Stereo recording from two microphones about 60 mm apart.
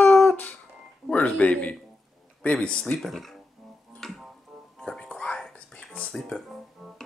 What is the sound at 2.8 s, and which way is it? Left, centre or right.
Music, centre.